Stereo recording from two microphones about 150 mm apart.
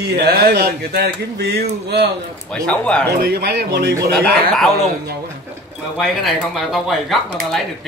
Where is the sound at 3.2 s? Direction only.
90° right.